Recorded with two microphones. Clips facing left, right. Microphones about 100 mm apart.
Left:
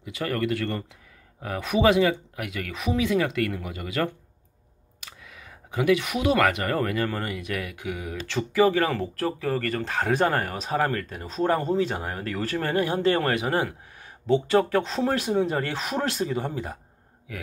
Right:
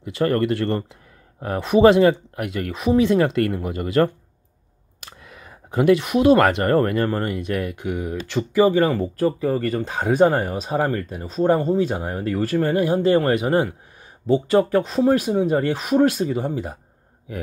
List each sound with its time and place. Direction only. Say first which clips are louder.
0.0 s speech: right 7 dB; 40° right (ahead or behind)
5.0 s a sound: right 4 dB; 45° right (ahead or behind)
6.2 s speech: right 7 dB; 40° right (ahead or behind); by 16.7 s 15° right (ahead or behind)